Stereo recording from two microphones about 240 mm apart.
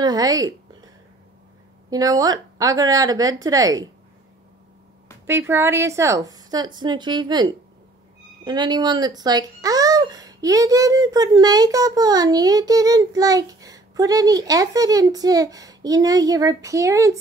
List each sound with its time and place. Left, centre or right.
0.0 s a woman's voice: centre
1.9 s speech: centre
5.2 s speech: centre